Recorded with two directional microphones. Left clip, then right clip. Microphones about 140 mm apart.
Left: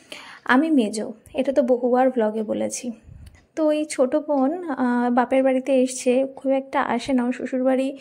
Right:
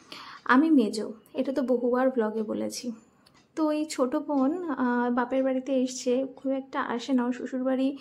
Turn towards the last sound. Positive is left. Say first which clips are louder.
# left 7 dB
turn(degrees=30)  # may be behind; listen again after turning